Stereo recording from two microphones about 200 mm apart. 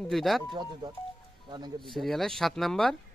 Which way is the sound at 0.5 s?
20° right (ahead or behind).